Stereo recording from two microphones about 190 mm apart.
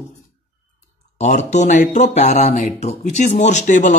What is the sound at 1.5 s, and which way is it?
Speech, 40° left (ahead or behind).